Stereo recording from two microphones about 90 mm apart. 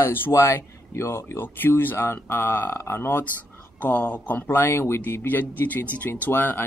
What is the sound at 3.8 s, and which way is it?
Speech, 15° left (ahead or behind).